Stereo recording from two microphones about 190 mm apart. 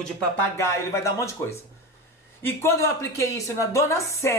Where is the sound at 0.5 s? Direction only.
15° left (ahead or behind).